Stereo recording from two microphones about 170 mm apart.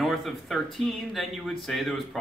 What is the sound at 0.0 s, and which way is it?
Speech, centre (ahead or behind).